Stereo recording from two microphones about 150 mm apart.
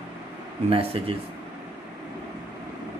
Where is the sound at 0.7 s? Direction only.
40° right (ahead or behind).